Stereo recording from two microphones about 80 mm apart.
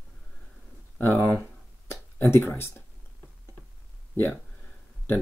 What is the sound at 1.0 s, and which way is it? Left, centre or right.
Speech, left.